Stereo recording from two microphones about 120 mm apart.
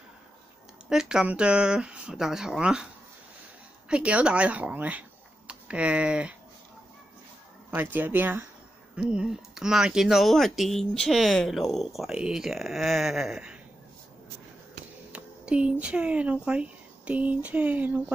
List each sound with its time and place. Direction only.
0.8 s speech: 5° right (ahead or behind)
3.9 s speech: 10° right (ahead or behind)
7.7 s speech: 15° right (ahead or behind)
15.1 s speech: 10° right (ahead or behind)